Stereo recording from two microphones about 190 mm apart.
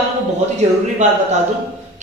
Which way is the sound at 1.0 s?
40° right (ahead or behind).